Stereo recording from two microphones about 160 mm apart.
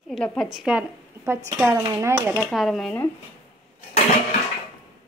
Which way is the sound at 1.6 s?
20° right (ahead or behind).